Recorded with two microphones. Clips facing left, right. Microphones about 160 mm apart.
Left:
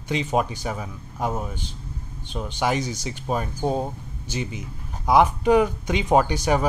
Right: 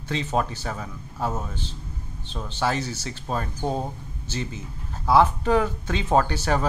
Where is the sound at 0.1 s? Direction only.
15° left (ahead or behind).